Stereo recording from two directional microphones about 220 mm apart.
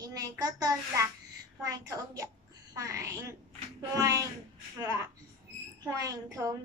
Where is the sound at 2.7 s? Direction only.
15° right (ahead or behind).